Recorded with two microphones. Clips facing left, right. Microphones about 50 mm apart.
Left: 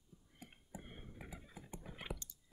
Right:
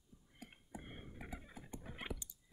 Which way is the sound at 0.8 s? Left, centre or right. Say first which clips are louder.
Right 2 dB; centre.